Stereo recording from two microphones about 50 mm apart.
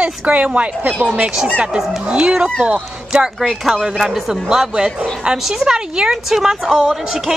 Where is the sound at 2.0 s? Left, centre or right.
Centre.